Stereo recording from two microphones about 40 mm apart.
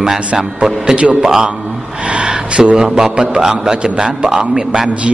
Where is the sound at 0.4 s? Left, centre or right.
Centre.